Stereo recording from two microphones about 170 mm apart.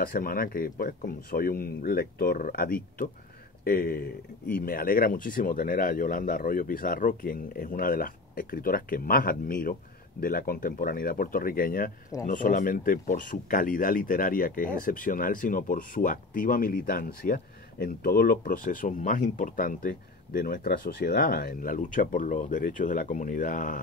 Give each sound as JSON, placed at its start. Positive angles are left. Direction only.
{"t": 0.0, "sound": "speech", "side_deg": 60}